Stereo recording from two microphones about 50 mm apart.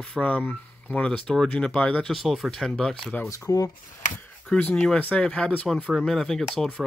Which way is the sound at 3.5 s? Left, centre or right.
Left.